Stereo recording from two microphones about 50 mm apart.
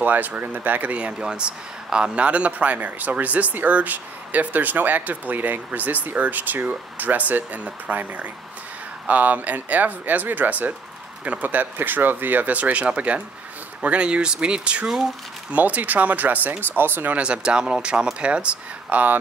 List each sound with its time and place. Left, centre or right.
0.0 s speech: right
15.5 s speech: right
17.2 s speech: right